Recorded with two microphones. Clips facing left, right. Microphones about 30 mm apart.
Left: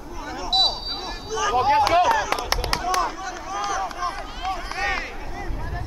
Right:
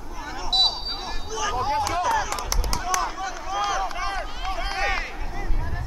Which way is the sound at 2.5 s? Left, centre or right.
Left.